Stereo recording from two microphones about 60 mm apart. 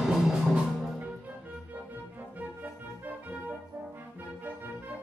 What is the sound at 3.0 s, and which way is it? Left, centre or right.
Music, right.